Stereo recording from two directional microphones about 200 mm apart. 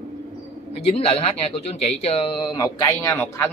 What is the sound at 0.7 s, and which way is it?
A man's voice, 30° left (ahead or behind).